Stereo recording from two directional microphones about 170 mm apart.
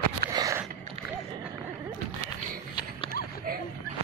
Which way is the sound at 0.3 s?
20° right (ahead or behind).